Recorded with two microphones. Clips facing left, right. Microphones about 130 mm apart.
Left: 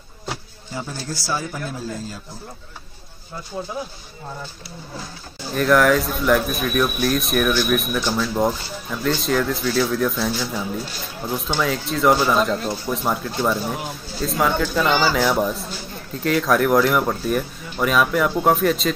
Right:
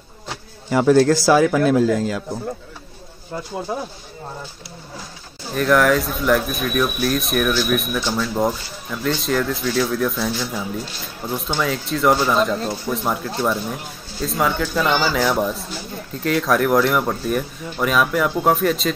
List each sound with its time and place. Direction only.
0.7 s a man's voice: 80° right
3.7 s speech: 60° right (ahead or behind)
5.5 s speech: centre (ahead or behind)